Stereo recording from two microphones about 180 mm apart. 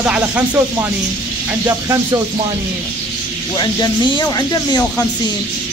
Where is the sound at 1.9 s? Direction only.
15° right (ahead or behind).